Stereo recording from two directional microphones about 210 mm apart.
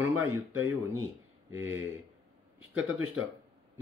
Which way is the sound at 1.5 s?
10° right (ahead or behind).